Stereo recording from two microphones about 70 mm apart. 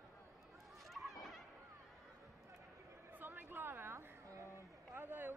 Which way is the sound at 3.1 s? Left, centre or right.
Right.